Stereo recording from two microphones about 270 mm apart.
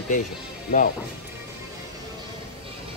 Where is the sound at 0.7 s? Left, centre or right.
Left.